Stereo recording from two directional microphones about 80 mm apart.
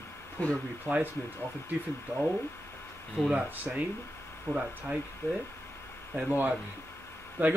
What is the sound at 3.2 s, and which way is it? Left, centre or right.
Speech, centre.